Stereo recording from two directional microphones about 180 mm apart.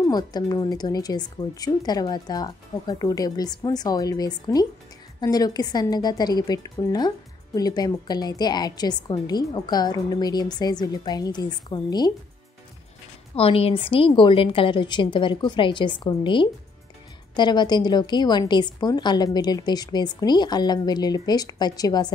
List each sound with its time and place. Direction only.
0.0 s a woman's voice: 20° left (ahead or behind)
13.4 s a woman's voice: 30° left (ahead or behind)